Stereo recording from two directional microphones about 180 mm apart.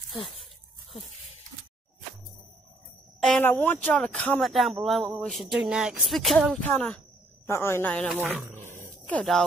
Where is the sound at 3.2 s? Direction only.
5° left (ahead or behind).